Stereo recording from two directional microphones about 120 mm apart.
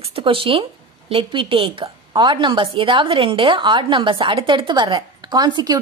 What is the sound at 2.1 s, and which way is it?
A woman's voice, 40° right (ahead or behind).